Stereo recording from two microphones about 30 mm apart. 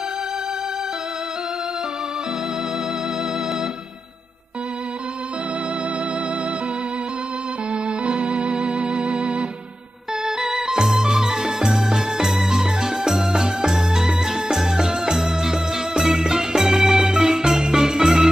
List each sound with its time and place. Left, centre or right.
8.4 s music: right
10.2 s music: right